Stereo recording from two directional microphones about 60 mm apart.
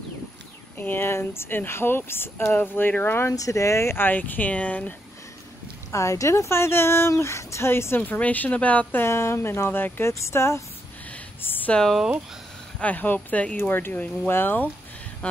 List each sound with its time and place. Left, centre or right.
0.7 s speech: left
3.3 s speech: left
5.9 s speech: left
8.0 s speech: left
9.0 s speech: left
10.1 s speech: left
11.4 s a sound: left
11.7 s speech: centre
12.7 s speech: left
13.7 s speech: left